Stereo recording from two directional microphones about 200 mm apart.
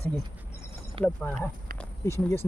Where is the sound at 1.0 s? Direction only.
5° left (ahead or behind).